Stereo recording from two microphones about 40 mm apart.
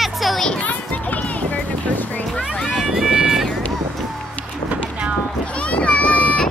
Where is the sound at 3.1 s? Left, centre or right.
Centre.